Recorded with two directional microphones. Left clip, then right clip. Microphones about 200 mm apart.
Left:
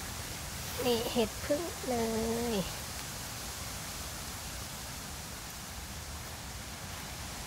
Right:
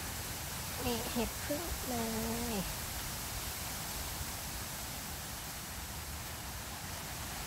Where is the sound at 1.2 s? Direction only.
40° left (ahead or behind).